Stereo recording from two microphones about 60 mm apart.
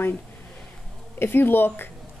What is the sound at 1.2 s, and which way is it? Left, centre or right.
Speech, left.